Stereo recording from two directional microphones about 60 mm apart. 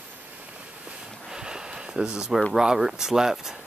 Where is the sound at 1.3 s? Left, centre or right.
Centre.